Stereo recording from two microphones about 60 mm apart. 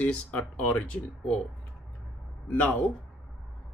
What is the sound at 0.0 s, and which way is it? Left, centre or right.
Speech, left.